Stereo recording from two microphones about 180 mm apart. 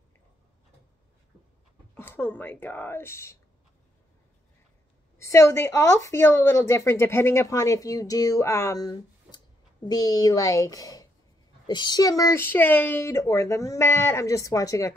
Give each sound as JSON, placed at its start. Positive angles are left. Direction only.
{"t": 2.0, "sound": "speech", "side_deg": 10}
{"t": 5.2, "sound": "speech", "side_deg": 15}